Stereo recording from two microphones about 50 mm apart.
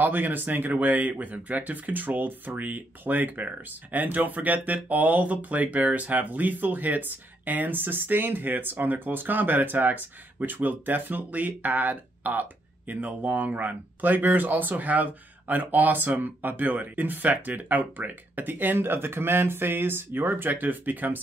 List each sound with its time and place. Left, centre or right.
0.0 s speech: right